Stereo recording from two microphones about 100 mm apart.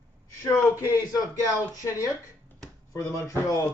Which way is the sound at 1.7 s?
40° left (ahead or behind).